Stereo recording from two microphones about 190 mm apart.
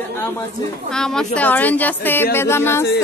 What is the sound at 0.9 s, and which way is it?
A woman's voice, 5° left (ahead or behind).